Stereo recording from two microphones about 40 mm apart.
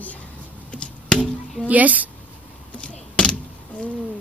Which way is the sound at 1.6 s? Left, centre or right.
Right.